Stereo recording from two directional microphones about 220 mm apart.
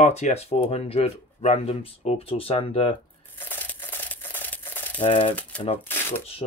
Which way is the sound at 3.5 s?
10° left (ahead or behind).